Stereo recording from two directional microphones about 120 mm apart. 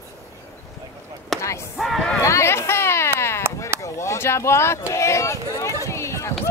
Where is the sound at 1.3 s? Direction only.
Centre (ahead or behind).